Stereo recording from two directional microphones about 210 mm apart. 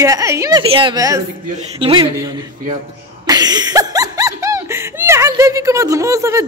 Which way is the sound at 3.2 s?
20° right (ahead or behind).